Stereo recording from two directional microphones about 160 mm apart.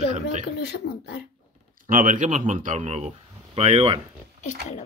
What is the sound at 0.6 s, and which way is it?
Speech, 90° left.